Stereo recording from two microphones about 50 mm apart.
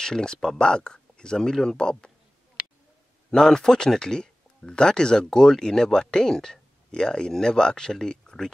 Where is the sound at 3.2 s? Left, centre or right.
Centre.